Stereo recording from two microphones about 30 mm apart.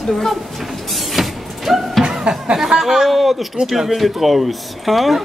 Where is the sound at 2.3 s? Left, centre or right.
Right.